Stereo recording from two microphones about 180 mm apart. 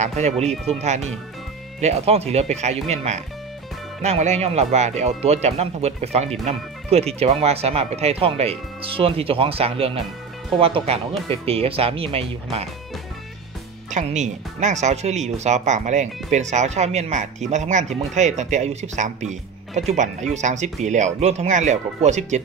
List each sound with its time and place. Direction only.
0.0 s speech: 40° right (ahead or behind)
13.8 s speech: 40° right (ahead or behind)